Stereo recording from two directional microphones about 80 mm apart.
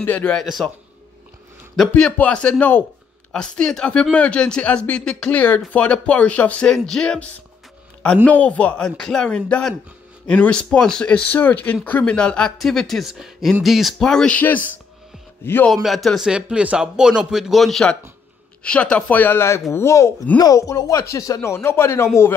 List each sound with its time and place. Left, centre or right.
0.0 s a man's voice: centre
0.4 s speech: centre
1.8 s speech: centre
8.3 s speech: centre
8.9 s speech: centre
14.3 s a man's voice: left
15.7 s speech: centre
16.3 s a man's voice: centre
18.6 s speech: centre; by 20.2 s left
20.3 s speech: left